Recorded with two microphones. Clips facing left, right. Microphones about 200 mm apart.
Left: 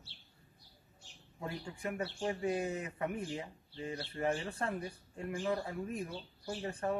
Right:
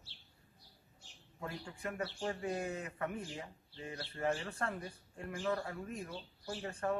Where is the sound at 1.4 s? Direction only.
20° left (ahead or behind).